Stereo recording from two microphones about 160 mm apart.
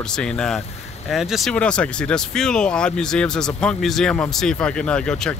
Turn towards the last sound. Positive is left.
turn(degrees=5)  # may be behind; listen again after turning